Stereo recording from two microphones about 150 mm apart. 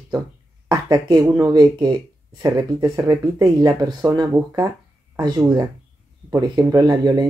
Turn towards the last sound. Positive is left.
turn(degrees=-25)  # may be behind; listen again after turning